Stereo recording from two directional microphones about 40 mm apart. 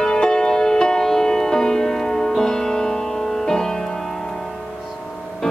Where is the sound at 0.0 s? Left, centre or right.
Centre.